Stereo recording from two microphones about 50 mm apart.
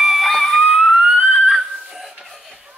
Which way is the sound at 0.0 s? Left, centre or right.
Centre.